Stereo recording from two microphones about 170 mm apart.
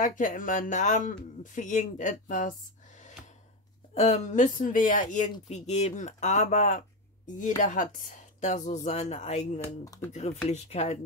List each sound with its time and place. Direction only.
0.0 s speech: 50° left (ahead or behind)
3.9 s speech: 40° left (ahead or behind)
5.5 s speech: 40° left (ahead or behind)